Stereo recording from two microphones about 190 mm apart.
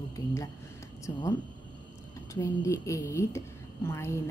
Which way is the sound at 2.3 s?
15° left (ahead or behind).